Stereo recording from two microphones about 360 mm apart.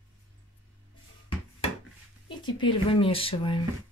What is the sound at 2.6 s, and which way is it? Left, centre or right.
Speech, centre.